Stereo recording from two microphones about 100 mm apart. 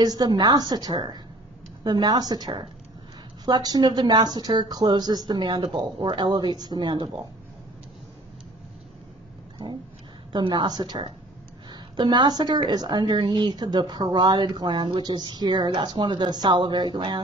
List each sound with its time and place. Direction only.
0.0 s a woman's voice: 40° right (ahead or behind); by 6.3 s 60° right (ahead or behind)
6.3 s a woman's voice: 45° right (ahead or behind)
10.3 s a woman's voice: 45° right (ahead or behind)